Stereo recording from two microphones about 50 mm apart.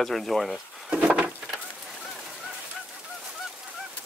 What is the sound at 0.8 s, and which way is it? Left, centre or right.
Wood, right.